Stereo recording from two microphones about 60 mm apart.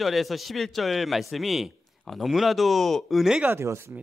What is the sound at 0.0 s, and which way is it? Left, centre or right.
Speech, centre.